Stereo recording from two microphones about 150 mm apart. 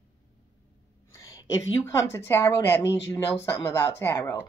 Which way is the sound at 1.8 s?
15° left (ahead or behind).